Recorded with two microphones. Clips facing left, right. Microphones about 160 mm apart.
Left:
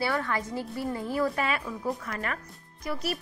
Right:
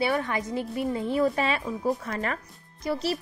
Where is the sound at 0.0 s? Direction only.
20° right (ahead or behind).